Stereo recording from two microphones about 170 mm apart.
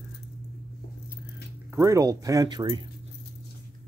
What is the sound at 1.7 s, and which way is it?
Speech, 15° right (ahead or behind).